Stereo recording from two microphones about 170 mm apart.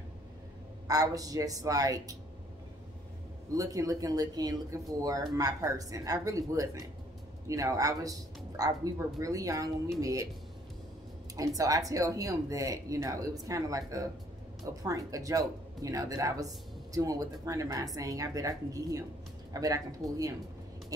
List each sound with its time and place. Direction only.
0.8 s speech: 20° right (ahead or behind)
3.5 s speech: 20° right (ahead or behind)
11.3 s speech: 20° right (ahead or behind)